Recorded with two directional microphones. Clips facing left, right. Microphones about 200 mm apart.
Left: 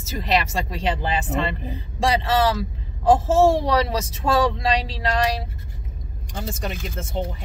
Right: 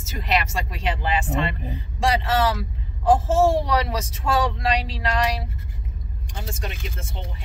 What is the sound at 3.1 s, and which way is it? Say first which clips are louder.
Speech: left 2 dB; 35° left (ahead or behind).